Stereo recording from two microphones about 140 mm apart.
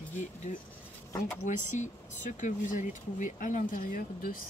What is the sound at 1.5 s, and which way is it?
Speech, 60° left (ahead or behind).